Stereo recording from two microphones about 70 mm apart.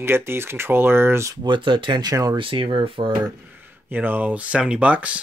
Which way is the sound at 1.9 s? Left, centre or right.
Right.